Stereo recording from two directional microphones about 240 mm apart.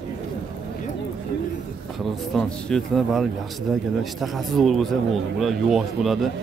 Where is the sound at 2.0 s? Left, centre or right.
Centre.